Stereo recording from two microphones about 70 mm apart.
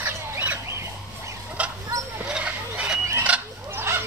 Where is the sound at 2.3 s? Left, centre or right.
Centre.